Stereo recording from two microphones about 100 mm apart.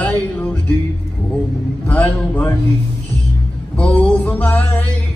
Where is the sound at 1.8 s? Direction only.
15° left (ahead or behind).